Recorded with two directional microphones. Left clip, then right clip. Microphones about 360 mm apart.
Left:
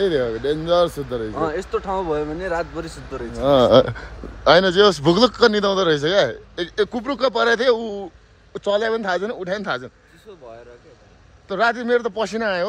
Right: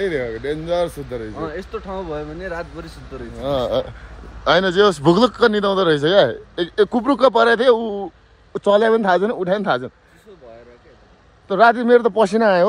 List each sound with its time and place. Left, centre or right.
0.0 s speech: centre
1.3 s speech: left
4.5 s a man's voice: centre
11.4 s a man's voice: centre